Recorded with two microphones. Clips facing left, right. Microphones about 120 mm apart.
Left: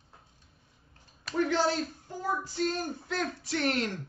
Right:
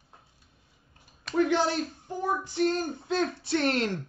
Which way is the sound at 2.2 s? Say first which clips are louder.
Right 4 dB; 20° right (ahead or behind).